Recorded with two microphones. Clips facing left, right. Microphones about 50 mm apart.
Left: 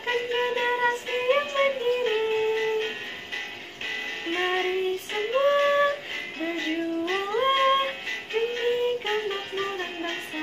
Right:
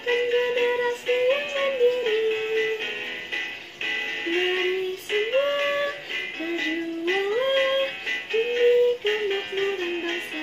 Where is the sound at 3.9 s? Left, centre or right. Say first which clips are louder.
Right 4 dB; right.